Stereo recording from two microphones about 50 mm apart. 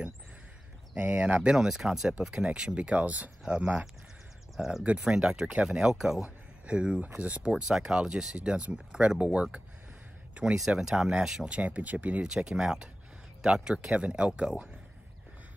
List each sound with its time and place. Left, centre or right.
0.9 s speech: right
1.7 s speech: centre; by 3.3 s right
3.4 s speech: centre
5.9 s speech: centre
6.2 s a sound: right
7.0 s speech: right
10.4 s speech: centre
11.4 s speech: right
12.2 s speech: centre